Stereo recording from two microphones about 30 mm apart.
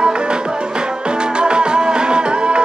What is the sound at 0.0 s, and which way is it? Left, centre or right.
Music, right.